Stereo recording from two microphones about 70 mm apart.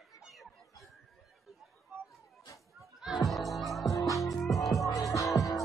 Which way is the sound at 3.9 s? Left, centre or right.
Left.